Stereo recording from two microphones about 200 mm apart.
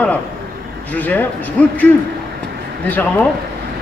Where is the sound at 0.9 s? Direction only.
10° left (ahead or behind).